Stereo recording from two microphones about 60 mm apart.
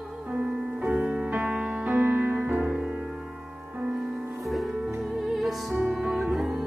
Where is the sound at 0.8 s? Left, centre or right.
Centre.